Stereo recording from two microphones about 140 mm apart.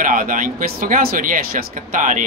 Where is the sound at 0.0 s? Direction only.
70° right (ahead or behind).